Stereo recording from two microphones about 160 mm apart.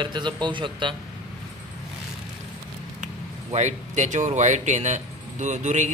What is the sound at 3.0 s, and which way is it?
Speech, 50° right (ahead or behind).